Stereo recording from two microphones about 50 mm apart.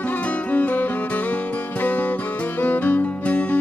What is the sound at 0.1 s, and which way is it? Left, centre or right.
Music, left.